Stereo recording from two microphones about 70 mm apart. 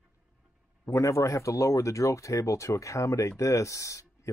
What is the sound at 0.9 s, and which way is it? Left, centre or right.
Speech, left.